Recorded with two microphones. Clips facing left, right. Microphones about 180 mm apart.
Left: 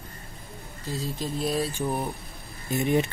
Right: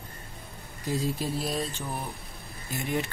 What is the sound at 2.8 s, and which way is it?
Speech, 20° left (ahead or behind).